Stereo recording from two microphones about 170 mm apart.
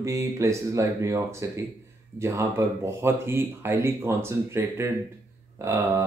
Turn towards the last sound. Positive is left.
turn(degrees=-20)  # may be behind; listen again after turning